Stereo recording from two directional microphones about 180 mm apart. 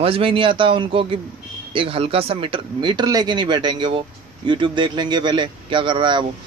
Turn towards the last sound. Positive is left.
turn(degrees=-25)  # may be behind; listen again after turning